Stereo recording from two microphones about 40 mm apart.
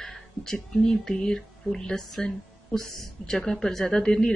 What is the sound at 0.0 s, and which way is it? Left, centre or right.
Speech, centre.